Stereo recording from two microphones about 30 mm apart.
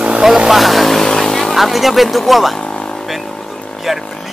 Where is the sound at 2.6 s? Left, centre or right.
Left.